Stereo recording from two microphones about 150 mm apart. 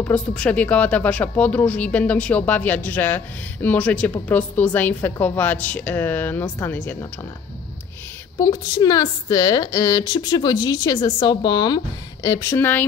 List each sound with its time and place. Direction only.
0.0 s speech: 5° left (ahead or behind)
8.4 s a woman's voice: 30° left (ahead or behind)